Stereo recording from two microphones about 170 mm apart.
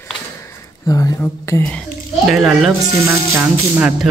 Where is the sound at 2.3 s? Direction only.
5° right (ahead or behind).